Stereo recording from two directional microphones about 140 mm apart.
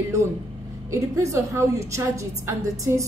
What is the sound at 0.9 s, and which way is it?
A woman's voice, 20° right (ahead or behind).